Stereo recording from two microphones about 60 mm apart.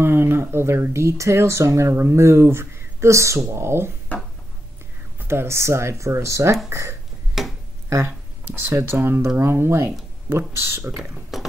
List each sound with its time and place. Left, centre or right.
0.0 s speech: right
3.3 s speech: right
5.3 s speech: right
7.4 s a sound: centre
8.5 s speech: right
11.3 s a sound: centre